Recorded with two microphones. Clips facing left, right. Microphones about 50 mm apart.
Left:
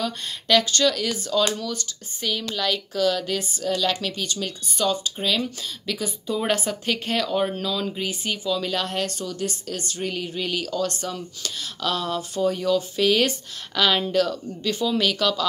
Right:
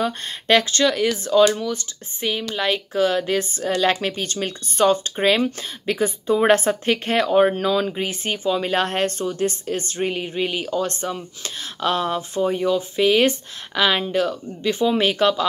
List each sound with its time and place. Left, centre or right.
0.0 s speech: right